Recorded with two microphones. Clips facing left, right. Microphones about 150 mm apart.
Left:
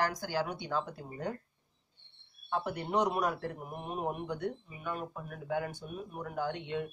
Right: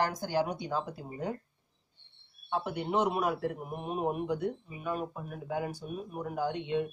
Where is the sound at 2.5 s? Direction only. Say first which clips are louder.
Right 1 dB; centre (ahead or behind).